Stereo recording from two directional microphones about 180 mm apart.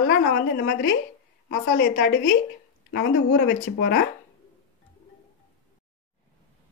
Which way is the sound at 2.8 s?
75° left (ahead or behind).